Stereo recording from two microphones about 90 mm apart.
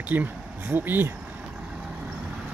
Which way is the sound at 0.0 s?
20° right (ahead or behind).